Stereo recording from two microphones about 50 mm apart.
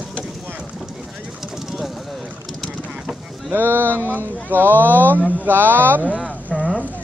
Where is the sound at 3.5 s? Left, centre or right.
Right.